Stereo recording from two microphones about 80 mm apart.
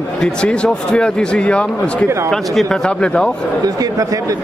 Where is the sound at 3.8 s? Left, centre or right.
Right.